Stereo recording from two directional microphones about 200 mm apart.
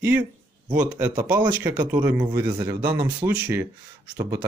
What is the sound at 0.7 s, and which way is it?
Speech, 10° right (ahead or behind).